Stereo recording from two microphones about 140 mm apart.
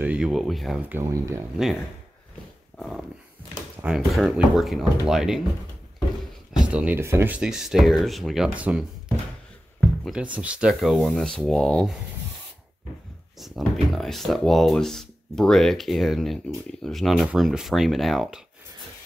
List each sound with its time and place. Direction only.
0.0 s speech: 5° right (ahead or behind)
0.8 s speech: 15° right (ahead or behind)
2.8 s dog: centre (ahead or behind)
3.8 s speech: centre (ahead or behind)
6.5 s speech: 10° right (ahead or behind)
10.3 s speech: 10° right (ahead or behind)
13.4 s speech: centre (ahead or behind)